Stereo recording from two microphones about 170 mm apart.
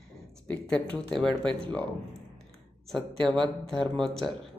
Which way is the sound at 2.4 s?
5° left (ahead or behind).